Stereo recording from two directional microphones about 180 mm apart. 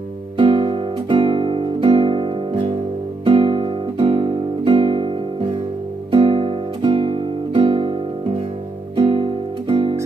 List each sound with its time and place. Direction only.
0.4 s guitar: 30° right (ahead or behind)
6.1 s guitar: 30° right (ahead or behind)
8.9 s music: 30° right (ahead or behind)